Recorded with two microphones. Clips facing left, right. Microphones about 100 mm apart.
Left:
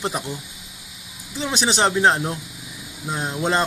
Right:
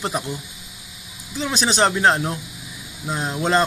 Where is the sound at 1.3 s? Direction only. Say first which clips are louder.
Right 1 dB; 20° left (ahead or behind).